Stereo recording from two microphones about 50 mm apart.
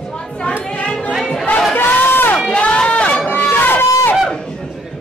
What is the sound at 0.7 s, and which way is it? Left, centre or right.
Chatter, left.